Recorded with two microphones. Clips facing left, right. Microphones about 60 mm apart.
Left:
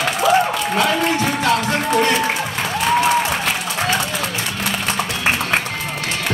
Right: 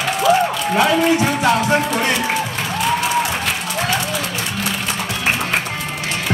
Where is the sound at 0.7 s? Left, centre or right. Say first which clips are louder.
Right 4 dB; centre.